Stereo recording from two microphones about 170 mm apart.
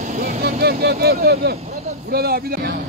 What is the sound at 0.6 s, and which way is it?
Speech, 65° right (ahead or behind).